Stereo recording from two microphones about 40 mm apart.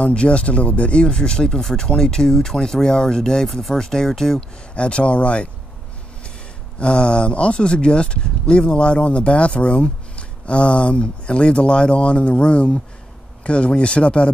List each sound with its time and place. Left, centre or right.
0.0 s speech: left
3.4 s speech: centre
3.7 s speech: centre
4.7 s speech: left
6.8 s speech: left